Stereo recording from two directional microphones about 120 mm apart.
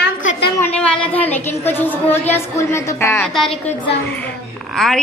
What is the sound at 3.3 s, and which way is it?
Speech, centre (ahead or behind).